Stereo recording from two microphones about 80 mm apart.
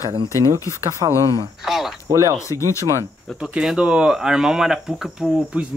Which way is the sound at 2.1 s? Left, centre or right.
Right.